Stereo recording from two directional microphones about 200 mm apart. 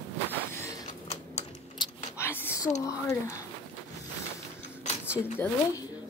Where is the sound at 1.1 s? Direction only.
30° left (ahead or behind).